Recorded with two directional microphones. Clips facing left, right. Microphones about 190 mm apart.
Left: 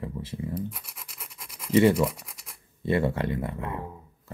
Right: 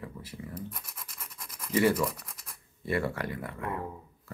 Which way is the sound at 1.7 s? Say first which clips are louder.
Left 6 dB; 25° left (ahead or behind).